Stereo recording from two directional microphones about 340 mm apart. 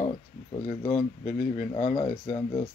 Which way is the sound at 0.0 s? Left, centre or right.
Centre.